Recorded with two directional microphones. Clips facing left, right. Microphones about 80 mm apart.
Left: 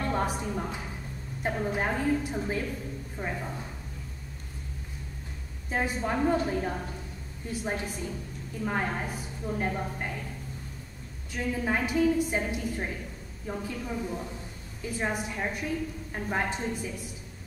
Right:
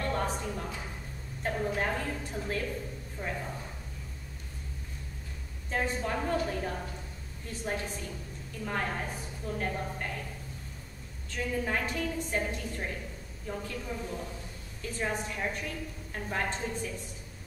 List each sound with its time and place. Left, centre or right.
0.0 s a sound: centre
1.4 s a woman's voice: centre
5.7 s a woman's voice: centre
11.2 s a woman's voice: centre